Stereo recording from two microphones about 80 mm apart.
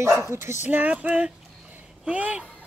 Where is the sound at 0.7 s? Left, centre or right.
Centre.